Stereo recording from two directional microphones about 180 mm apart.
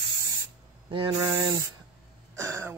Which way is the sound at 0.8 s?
30° right (ahead or behind).